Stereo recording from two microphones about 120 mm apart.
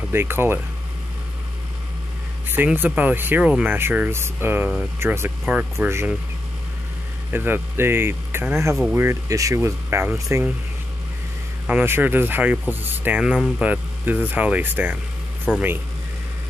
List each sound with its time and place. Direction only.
0.1 s speech: 20° right (ahead or behind)
2.5 s speech: 15° right (ahead or behind)
7.2 s speech: 15° right (ahead or behind)
11.6 s speech: 15° right (ahead or behind)